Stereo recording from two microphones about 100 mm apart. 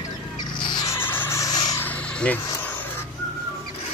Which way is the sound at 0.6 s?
50° left (ahead or behind).